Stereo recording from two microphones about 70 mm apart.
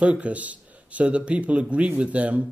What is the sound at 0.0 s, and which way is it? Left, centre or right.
Speech, centre.